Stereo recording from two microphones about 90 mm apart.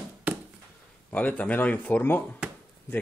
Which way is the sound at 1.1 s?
15° left (ahead or behind).